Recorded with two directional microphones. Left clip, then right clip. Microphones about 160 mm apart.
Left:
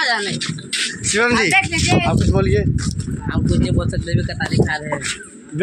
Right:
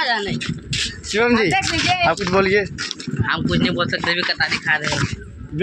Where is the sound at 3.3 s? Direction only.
5° left (ahead or behind).